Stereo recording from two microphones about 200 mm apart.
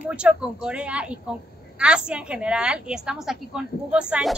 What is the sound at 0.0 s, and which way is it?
A woman's voice, 5° right (ahead or behind).